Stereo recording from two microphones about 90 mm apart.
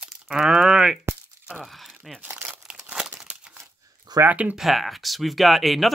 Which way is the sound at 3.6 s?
40° right (ahead or behind).